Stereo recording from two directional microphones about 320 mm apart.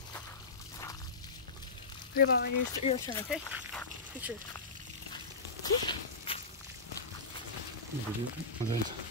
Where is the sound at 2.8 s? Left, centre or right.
Centre.